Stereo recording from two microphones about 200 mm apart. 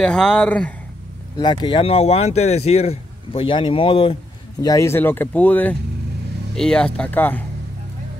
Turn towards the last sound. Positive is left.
turn(degrees=10)  # may be behind; listen again after turning